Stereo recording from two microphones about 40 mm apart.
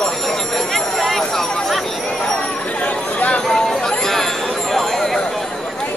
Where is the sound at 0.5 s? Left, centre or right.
Centre.